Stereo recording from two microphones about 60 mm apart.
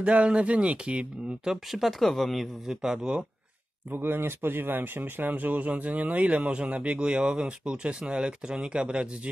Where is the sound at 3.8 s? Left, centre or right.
Right.